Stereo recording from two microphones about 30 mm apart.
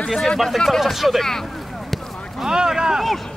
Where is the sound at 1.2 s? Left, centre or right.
Centre.